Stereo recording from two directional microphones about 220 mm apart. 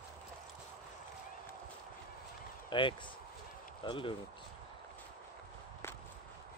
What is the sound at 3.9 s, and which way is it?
Speech, 25° left (ahead or behind).